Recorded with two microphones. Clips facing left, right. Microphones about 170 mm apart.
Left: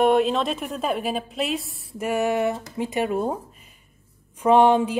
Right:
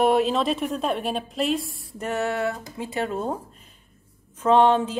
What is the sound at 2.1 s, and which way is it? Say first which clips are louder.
A woman's voice: left 3 dB; 15° left (ahead or behind).